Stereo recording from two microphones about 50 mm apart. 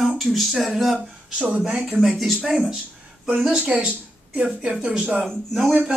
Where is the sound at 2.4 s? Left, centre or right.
Centre.